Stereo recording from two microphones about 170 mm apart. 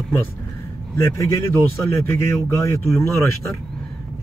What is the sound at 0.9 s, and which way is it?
Speech, 15° left (ahead or behind).